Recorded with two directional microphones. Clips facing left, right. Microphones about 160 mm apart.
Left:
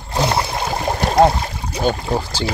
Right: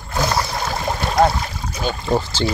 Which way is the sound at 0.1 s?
25° left (ahead or behind).